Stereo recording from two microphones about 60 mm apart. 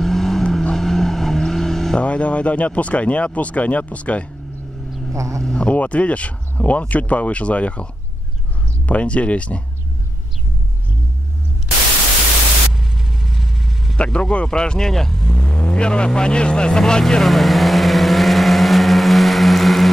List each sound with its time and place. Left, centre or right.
0.0 s vehicle: centre
2.0 s speech: left
5.1 s speech: right
5.4 s speech: centre
12.7 s vehicle: centre
13.9 s speech: centre
15.6 s vehicle: centre